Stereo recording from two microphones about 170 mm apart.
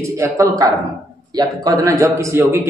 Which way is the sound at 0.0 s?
20° right (ahead or behind).